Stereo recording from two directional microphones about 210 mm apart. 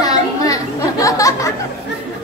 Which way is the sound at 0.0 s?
15° left (ahead or behind).